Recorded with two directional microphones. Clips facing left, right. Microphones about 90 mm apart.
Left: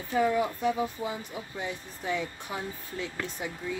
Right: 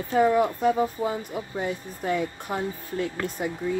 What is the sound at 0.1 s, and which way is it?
Speech, 50° right (ahead or behind).